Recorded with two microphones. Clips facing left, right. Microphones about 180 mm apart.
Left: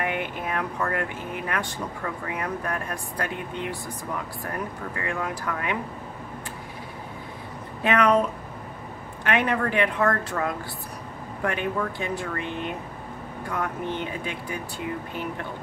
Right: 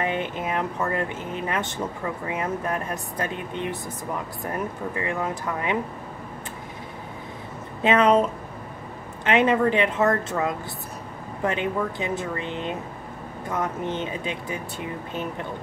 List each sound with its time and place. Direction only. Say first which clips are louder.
0.0 s speech: right 2 dB; 20° right (ahead or behind)
7.8 s speech: right 2 dB; 20° right (ahead or behind)